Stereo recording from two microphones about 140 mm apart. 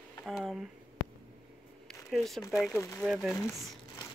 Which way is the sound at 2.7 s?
20° left (ahead or behind).